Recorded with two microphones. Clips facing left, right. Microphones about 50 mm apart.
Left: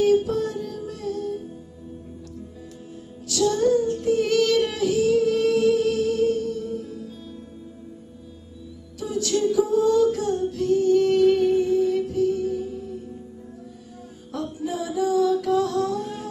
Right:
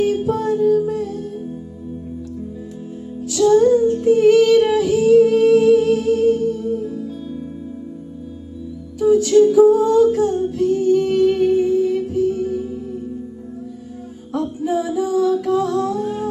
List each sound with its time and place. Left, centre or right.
0.0 s music: right
3.3 s music: right
9.2 s music: right
14.3 s music: right